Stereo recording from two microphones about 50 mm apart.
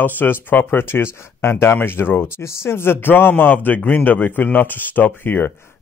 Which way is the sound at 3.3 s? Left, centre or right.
Left.